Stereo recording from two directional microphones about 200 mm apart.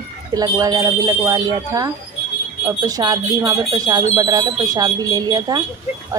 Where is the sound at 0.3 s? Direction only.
20° right (ahead or behind).